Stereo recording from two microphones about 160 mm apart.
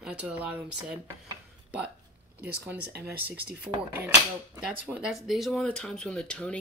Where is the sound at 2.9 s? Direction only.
90° right.